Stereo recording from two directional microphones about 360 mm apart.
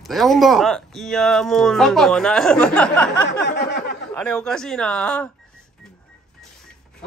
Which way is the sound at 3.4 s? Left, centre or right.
Left.